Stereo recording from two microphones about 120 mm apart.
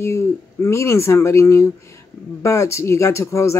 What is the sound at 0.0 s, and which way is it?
Speech, 25° left (ahead or behind).